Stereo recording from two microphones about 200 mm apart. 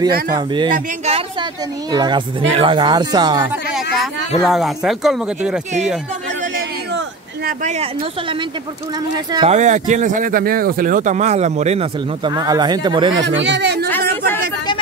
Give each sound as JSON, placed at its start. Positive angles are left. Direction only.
{"t": 0.3, "sound": "a woman's voice", "side_deg": -20}
{"t": 0.7, "sound": "speech", "side_deg": -40}
{"t": 1.1, "sound": "a woman's voice", "side_deg": -20}
{"t": 4.5, "sound": "speech", "side_deg": 0}
{"t": 6.5, "sound": "a sound", "side_deg": -60}
{"t": 7.6, "sound": "a woman's voice", "side_deg": -30}
{"t": 13.4, "sound": "speech", "side_deg": -60}
{"t": 13.8, "sound": "a sound", "side_deg": 10}